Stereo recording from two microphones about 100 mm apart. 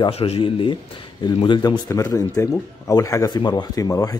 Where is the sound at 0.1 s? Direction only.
75° left (ahead or behind); by 1.6 s 50° left (ahead or behind).